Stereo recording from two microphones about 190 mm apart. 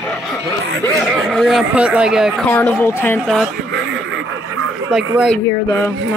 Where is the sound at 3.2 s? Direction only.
Centre (ahead or behind).